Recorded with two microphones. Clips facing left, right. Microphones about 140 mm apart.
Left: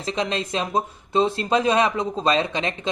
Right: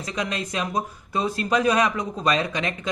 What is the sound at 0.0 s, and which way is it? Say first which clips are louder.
Speech: left 3 dB; 25° left (ahead or behind).